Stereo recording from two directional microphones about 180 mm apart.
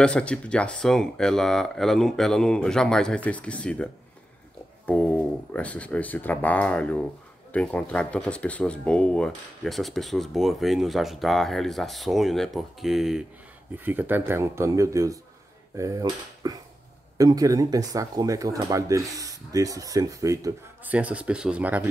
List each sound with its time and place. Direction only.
0.0 s speech: 5° left (ahead or behind)